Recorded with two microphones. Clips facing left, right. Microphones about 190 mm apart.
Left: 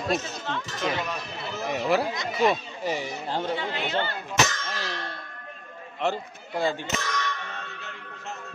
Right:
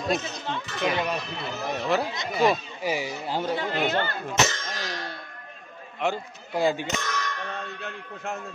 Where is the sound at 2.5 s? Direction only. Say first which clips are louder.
Right 1 dB; 5° right (ahead or behind).